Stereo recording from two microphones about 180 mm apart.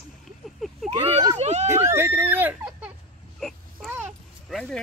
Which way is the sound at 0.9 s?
35° right (ahead or behind).